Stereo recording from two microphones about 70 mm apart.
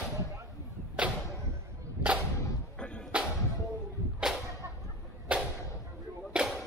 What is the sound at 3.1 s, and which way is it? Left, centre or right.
Music, centre.